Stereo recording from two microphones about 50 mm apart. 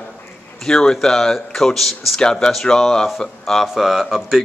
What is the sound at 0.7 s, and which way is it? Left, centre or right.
Speech, centre.